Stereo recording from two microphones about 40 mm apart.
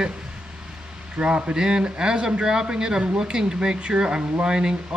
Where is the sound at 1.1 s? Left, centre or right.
Right.